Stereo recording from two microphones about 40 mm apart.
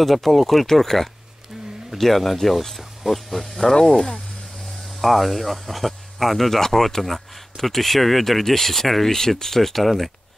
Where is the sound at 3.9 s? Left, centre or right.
Centre.